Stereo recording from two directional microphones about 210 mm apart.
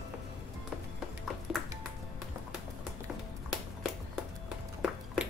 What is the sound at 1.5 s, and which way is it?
Ping, 5° right (ahead or behind).